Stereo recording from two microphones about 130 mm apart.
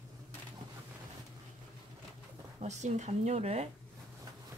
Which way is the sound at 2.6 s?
65° right (ahead or behind).